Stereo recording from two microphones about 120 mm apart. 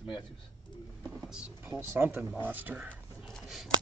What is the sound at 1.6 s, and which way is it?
Speech, 20° right (ahead or behind).